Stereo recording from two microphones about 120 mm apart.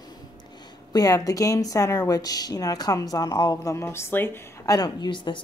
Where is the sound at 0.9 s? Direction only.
30° left (ahead or behind).